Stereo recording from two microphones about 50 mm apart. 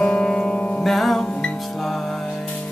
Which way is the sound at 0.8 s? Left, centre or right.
Centre.